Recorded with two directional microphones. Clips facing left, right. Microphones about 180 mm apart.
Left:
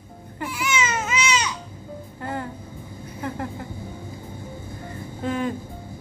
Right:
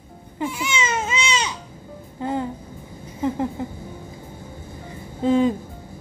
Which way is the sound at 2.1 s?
20° right (ahead or behind).